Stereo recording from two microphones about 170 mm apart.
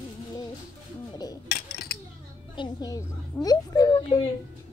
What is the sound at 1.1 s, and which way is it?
Dishes, 25° left (ahead or behind).